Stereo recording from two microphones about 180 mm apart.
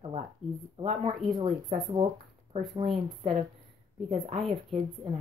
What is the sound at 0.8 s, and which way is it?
Speech, 30° right (ahead or behind).